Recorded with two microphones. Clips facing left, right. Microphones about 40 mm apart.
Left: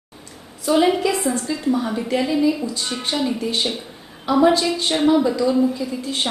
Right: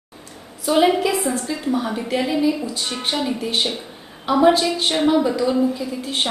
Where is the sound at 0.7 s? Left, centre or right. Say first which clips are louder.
Even; centre.